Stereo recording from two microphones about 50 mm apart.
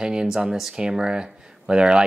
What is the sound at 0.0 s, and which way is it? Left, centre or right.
Speech, centre.